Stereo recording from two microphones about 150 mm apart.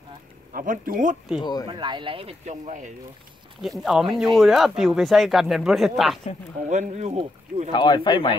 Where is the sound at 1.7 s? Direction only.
30° right (ahead or behind).